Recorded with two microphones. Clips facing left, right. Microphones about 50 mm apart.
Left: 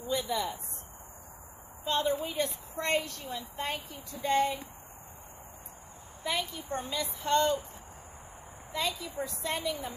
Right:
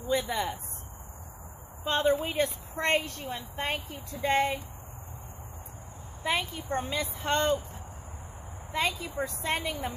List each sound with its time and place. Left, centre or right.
0.1 s a woman's voice: right
2.0 s a woman's voice: right
2.3 s a woman's voice: right
6.2 s a woman's voice: right
8.7 s a woman's voice: right